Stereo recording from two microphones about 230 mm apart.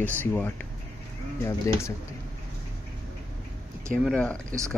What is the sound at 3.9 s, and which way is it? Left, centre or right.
Speech, centre.